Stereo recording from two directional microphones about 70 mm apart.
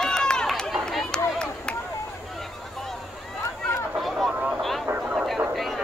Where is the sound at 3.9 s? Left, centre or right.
Centre.